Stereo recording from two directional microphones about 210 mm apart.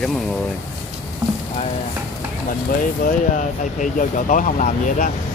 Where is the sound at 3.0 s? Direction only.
40° left (ahead or behind).